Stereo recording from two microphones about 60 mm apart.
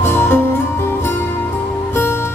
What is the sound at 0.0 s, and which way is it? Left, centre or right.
Music, left.